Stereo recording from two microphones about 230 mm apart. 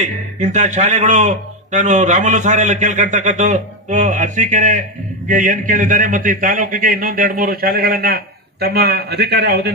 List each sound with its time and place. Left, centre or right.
0.0 s a man's voice: right